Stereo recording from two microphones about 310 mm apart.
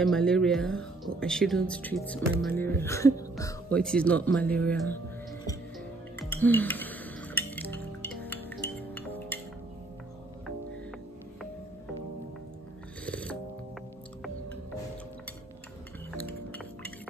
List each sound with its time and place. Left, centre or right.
0.0 s speech: centre
6.3 s speech: centre
7.5 s music: centre
13.0 s music: centre